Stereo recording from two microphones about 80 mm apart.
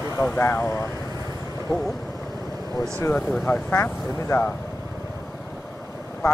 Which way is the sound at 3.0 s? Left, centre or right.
Left.